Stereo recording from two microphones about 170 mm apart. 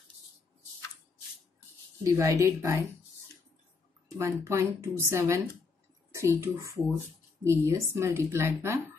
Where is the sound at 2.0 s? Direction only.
20° right (ahead or behind).